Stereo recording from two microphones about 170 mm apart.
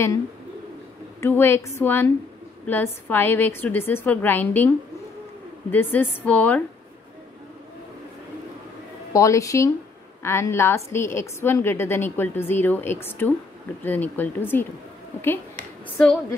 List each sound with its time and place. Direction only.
1.2 s a woman's voice: 15° left (ahead or behind)
9.1 s a woman's voice: 20° left (ahead or behind)